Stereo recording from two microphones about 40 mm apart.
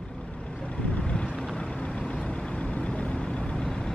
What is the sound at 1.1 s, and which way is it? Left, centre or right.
Vehicle, left.